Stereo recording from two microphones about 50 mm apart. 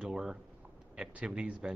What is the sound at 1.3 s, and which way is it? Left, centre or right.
Speech, right.